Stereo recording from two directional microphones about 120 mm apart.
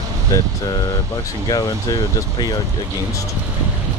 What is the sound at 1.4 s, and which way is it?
Speech, 35° left (ahead or behind).